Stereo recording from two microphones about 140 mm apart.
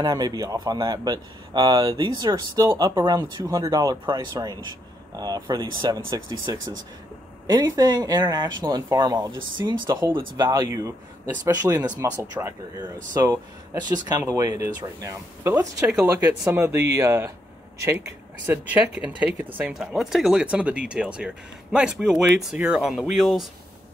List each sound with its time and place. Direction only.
0.0 s speech: 30° right (ahead or behind)
15.9 s speech: 5° right (ahead or behind)
16.4 s speech: 20° right (ahead or behind); by 23.4 s centre (ahead or behind)